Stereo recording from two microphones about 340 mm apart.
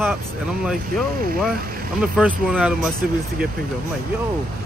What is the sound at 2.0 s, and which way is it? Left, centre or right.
Speech, centre.